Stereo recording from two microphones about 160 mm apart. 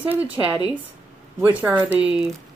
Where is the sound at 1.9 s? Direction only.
5° right (ahead or behind).